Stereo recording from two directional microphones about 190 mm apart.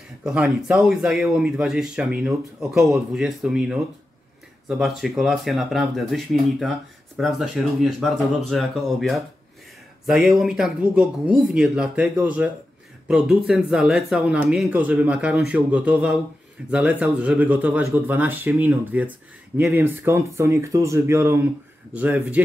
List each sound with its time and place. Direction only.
0.2 s speech: 5° right (ahead or behind)